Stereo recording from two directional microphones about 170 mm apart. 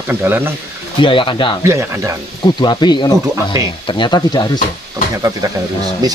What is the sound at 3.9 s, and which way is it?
Speech, 25° left (ahead or behind).